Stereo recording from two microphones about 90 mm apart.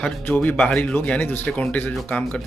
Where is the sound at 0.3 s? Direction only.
15° left (ahead or behind).